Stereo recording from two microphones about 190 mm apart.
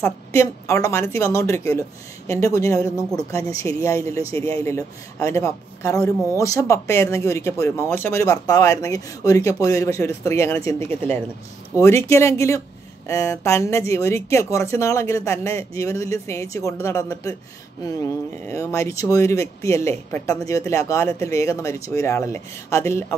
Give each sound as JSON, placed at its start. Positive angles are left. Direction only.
{"t": 0.0, "sound": "a man's voice", "side_deg": 15}